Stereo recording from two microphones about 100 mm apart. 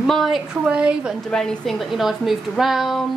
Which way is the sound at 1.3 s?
5° left (ahead or behind).